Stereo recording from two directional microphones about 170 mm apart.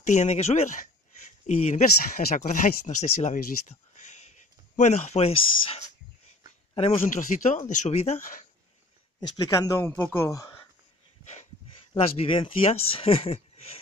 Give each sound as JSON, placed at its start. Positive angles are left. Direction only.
{"t": 0.0, "sound": "speech", "side_deg": 40}
{"t": 6.7, "sound": "a sound", "side_deg": 35}
{"t": 7.1, "sound": "speech", "side_deg": 50}
{"t": 9.4, "sound": "speech", "side_deg": 20}
{"t": 11.9, "sound": "speech", "side_deg": 30}